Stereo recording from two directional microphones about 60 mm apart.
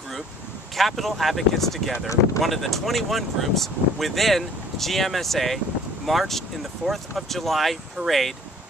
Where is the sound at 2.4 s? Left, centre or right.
Centre.